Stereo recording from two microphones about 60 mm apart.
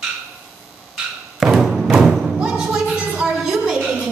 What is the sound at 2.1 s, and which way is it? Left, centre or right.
Thump, centre.